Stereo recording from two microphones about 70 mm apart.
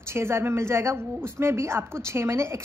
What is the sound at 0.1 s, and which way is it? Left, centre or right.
A woman's voice, right.